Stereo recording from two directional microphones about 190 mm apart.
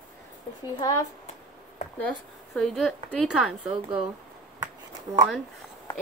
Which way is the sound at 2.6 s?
Centre (ahead or behind).